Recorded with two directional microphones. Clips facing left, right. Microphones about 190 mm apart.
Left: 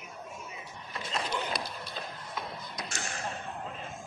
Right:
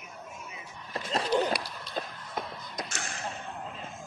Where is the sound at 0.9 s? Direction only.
35° right (ahead or behind).